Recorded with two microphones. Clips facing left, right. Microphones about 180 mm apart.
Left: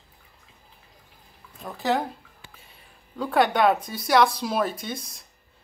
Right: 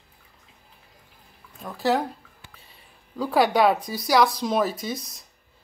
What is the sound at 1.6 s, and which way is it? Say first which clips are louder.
Speech: right 2 dB; centre (ahead or behind).